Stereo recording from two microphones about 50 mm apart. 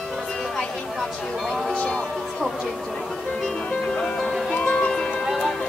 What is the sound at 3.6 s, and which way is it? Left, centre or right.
Music, centre.